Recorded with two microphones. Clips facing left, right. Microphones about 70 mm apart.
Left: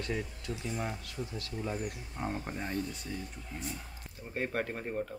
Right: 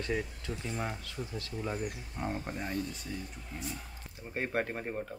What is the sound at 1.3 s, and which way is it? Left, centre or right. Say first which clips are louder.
Speech: right 1 dB; right.